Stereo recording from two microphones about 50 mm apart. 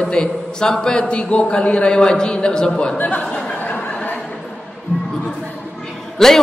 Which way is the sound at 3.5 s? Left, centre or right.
Left.